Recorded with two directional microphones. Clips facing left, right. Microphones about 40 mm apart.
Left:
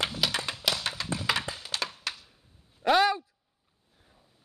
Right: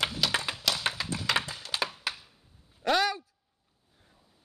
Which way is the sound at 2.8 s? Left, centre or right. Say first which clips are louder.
Left 4 dB; centre.